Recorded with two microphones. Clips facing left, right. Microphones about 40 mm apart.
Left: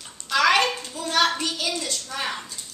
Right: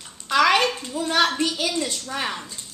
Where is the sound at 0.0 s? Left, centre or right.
Centre.